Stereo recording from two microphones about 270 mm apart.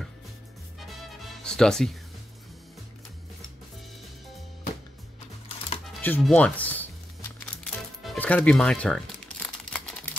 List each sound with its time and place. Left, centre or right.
1.4 s speech: centre
6.0 s crumpling: centre